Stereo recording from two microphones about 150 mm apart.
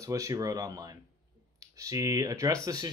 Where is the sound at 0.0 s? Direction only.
20° right (ahead or behind).